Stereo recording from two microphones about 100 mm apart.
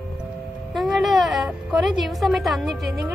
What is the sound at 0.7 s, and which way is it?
A woman's voice, centre (ahead or behind).